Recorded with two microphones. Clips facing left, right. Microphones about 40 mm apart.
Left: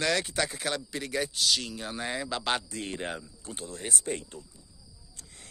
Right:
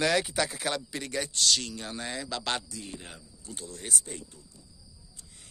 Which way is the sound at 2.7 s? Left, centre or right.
Left.